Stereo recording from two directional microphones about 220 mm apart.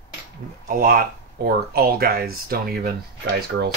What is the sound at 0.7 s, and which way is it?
Speech, 40° right (ahead or behind).